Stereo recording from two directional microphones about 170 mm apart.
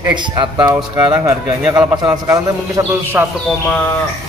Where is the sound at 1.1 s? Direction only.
10° right (ahead or behind).